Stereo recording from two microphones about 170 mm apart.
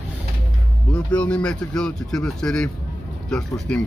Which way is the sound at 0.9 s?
5° left (ahead or behind).